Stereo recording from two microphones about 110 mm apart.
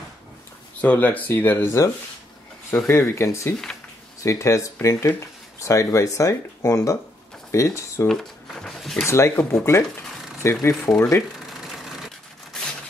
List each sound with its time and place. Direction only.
0.7 s speech: 15° left (ahead or behind)
8.1 s a sound: 5° left (ahead or behind)
9.0 s speech: 25° left (ahead or behind)
9.4 s speech: 10° left (ahead or behind)
10.4 s speech: 25° left (ahead or behind)